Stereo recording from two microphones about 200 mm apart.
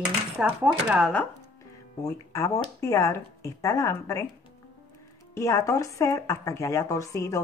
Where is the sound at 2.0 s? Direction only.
15° left (ahead or behind).